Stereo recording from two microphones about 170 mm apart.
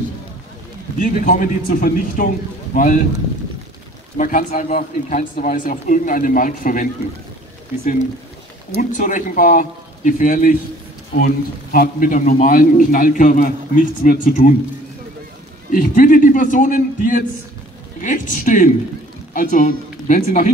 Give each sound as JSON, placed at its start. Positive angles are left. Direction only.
{"t": 0.9, "sound": "a man's voice", "side_deg": 50}
{"t": 4.2, "sound": "a man's voice", "side_deg": 50}
{"t": 8.7, "sound": "a man's voice", "side_deg": 50}
{"t": 15.7, "sound": "a man's voice", "side_deg": 55}